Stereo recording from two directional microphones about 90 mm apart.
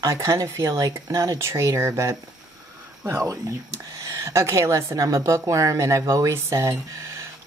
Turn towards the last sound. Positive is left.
turn(degrees=-35)  # may be behind; listen again after turning